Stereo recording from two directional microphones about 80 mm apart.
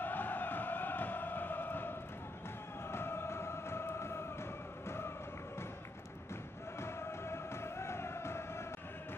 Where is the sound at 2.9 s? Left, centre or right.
Left.